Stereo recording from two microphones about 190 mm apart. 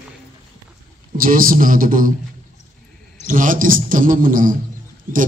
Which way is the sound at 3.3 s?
45° right (ahead or behind).